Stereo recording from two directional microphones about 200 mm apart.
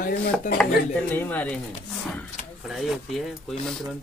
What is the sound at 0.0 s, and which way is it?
Dishes, 45° left (ahead or behind).